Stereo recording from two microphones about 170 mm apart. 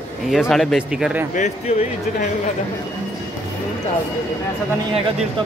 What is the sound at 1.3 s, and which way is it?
Speech, 45° left (ahead or behind).